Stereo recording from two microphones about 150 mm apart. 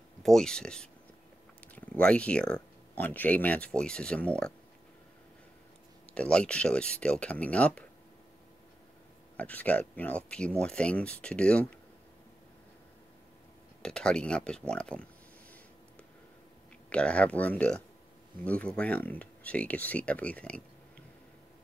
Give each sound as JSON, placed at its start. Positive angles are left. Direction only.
{"t": 0.2, "sound": "speech", "side_deg": 5}
{"t": 6.1, "sound": "speech", "side_deg": 5}
{"t": 9.4, "sound": "speech", "side_deg": 10}
{"t": 13.8, "sound": "speech", "side_deg": 5}
{"t": 16.9, "sound": "speech", "side_deg": 10}